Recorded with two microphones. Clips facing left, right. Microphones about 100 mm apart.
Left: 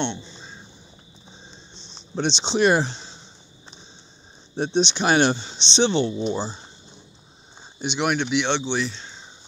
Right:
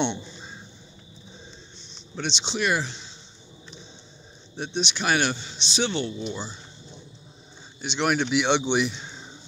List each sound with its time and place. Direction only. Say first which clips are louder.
0.0 s a sound: right 1 dB; 10° right (ahead or behind)
1.8 s speech: left 7 dB; 30° left (ahead or behind)
4.6 s speech: left 7 dB; 30° left (ahead or behind)
8.0 s speech: even; centre (ahead or behind)